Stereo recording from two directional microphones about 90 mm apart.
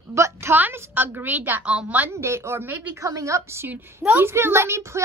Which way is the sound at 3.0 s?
35° right (ahead or behind).